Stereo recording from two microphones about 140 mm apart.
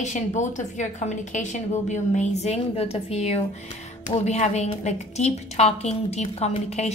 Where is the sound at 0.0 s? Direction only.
60° left (ahead or behind).